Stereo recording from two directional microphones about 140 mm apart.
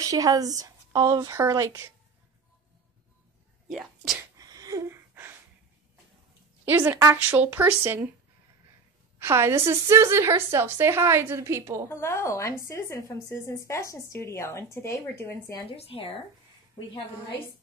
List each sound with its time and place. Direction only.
0.0 s a woman's voice: 25° right (ahead or behind)
3.6 s speech: centre (ahead or behind)
4.4 s a sound: 25° right (ahead or behind)
6.6 s speech: 15° right (ahead or behind)
9.2 s a woman's voice: 20° right (ahead or behind)
11.9 s a woman's voice: 20° left (ahead or behind)
15.7 s speech: 45° left (ahead or behind)